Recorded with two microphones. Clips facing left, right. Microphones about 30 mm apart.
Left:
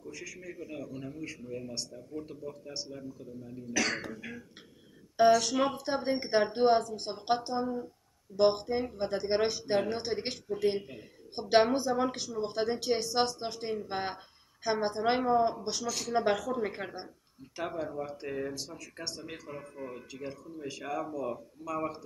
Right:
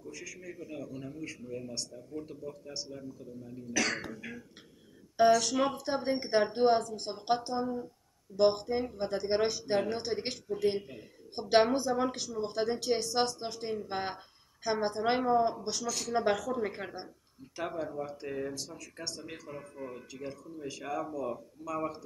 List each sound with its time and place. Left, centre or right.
0.0 s speech: centre